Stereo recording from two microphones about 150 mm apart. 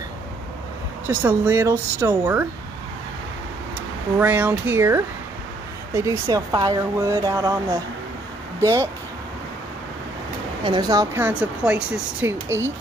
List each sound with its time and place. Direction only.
1.0 s speech: 15° right (ahead or behind)
4.2 s speech: 10° right (ahead or behind)
10.6 s speech: 30° right (ahead or behind)
11.2 s speech: 10° right (ahead or behind)